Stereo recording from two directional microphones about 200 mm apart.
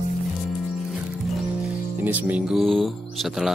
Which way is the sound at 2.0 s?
10° right (ahead or behind).